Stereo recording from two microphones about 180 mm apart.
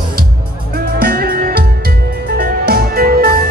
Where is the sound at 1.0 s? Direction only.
55° right (ahead or behind).